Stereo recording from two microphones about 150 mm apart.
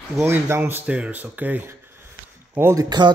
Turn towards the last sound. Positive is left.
turn(degrees=-25)  # may be behind; listen again after turning